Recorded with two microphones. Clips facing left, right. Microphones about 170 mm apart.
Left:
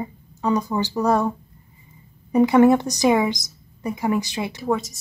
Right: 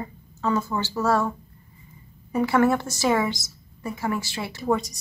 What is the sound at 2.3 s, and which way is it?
A woman's voice, 20° left (ahead or behind).